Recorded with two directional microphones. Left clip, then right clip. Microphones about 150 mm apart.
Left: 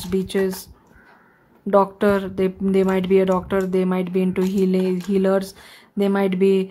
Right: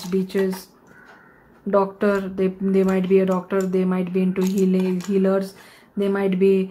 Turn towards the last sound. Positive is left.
turn(degrees=25)  # may be behind; listen again after turning